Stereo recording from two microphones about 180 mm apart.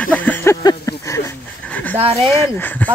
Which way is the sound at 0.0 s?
10° left (ahead or behind).